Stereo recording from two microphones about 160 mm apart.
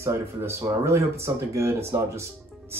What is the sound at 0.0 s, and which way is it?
Speech, 15° right (ahead or behind).